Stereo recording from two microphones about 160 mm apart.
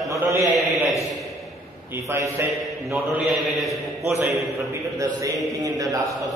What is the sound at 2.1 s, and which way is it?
Speech, 20° right (ahead or behind).